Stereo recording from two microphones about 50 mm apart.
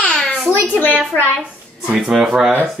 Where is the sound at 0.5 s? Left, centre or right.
Left.